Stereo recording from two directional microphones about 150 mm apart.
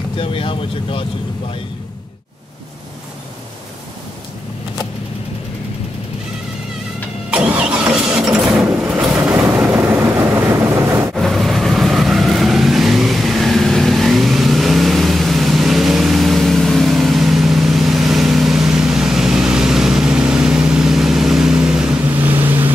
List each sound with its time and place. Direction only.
0.2 s speech: 35° left (ahead or behind)
7.2 s vehicle: 10° right (ahead or behind)
11.1 s vehicle: centre (ahead or behind)
22.4 s boat: 15° right (ahead or behind)